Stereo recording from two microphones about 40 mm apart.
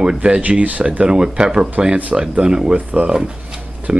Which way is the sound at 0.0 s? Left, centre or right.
Right.